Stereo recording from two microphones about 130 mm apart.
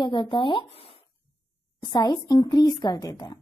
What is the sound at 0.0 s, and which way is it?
Speech, 35° left (ahead or behind).